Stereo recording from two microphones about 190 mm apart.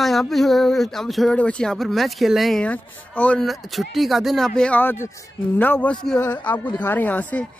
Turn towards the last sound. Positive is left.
turn(degrees=10)  # may be behind; listen again after turning